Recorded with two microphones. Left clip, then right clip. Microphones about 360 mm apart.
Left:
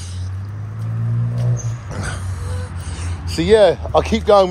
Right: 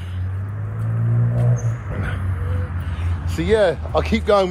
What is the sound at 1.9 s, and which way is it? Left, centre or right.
Music, centre.